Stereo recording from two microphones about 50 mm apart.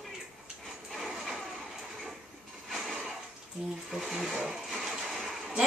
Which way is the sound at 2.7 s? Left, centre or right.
Centre.